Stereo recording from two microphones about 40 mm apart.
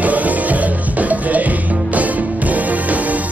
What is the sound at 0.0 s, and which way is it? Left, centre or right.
Music, right.